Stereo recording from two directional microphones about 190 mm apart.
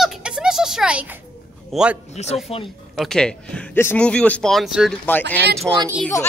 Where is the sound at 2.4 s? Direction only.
30° left (ahead or behind).